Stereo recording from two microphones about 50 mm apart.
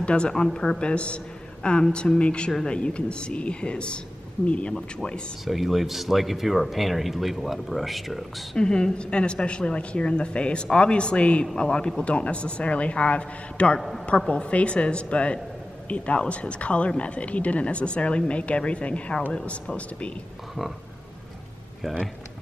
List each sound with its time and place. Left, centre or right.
0.0 s speech: left
5.4 s speech: centre
8.5 s speech: centre
13.7 s speech: centre
14.0 s speech: left
21.8 s speech: centre